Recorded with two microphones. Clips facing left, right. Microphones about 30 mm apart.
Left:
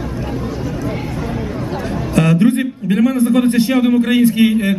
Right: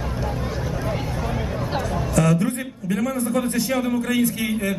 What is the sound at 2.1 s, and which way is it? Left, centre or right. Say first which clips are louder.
A man's voice: left 8 dB; left.